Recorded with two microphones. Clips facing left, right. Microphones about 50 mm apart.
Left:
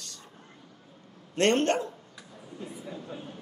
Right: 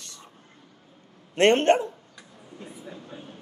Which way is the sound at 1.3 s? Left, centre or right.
Right.